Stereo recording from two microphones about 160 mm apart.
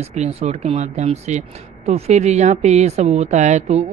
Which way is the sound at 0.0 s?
45° right (ahead or behind).